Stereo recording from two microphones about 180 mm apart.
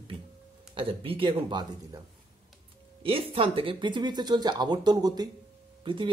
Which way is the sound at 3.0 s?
30° right (ahead or behind).